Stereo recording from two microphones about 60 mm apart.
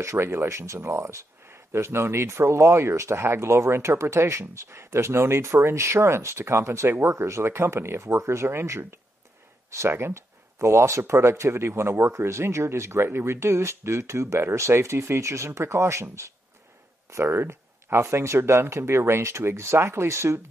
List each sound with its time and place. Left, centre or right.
0.0 s speech: right